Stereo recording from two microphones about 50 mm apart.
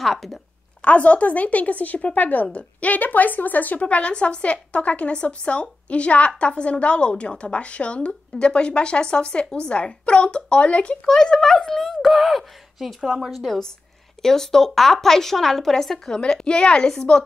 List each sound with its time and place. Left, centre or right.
0.0 s speech: centre
0.8 s a woman's voice: left
3.8 s a woman's voice: left
11.1 s a woman's voice: centre